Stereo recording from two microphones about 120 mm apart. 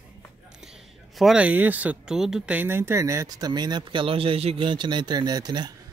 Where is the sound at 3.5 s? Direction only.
40° right (ahead or behind).